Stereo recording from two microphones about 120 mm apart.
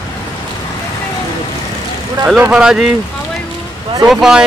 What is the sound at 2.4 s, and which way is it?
Speech, 5° right (ahead or behind).